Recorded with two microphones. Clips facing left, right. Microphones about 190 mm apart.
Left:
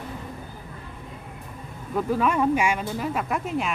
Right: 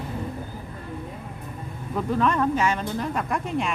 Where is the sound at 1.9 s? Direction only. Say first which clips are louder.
Even; 5° left (ahead or behind).